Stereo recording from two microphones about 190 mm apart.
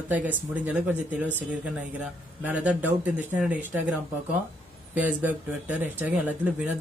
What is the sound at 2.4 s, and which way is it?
Speech, 10° right (ahead or behind).